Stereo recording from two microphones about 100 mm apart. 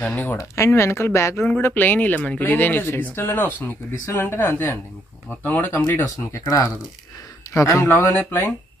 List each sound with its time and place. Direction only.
0.0 s speech: 15° left (ahead or behind)
6.0 s speech: 30° left (ahead or behind)